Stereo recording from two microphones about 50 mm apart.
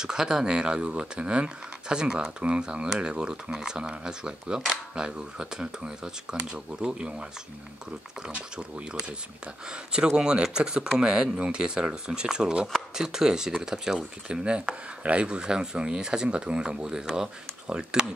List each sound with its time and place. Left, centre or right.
0.0 s speech: centre
8.3 s speech: right